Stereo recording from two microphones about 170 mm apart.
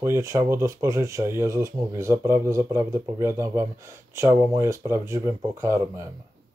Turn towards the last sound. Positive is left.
turn(degrees=-15)  # may be behind; listen again after turning